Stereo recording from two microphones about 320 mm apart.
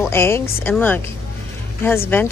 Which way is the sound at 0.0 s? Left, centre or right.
Centre.